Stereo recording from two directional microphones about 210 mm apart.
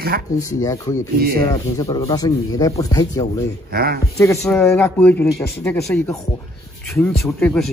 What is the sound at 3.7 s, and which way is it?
Speech, 45° right (ahead or behind).